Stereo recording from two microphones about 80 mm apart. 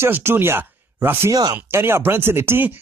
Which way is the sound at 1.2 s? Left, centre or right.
Right.